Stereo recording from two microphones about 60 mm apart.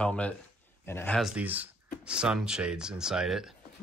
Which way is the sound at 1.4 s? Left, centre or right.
Right.